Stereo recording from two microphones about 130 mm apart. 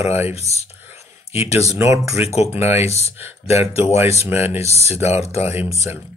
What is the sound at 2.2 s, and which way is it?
Speech, 55° left (ahead or behind).